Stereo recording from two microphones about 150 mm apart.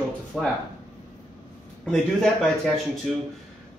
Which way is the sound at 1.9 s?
Centre (ahead or behind).